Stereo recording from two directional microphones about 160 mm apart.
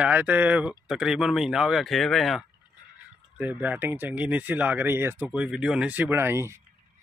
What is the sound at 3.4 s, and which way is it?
Speech, 10° right (ahead or behind).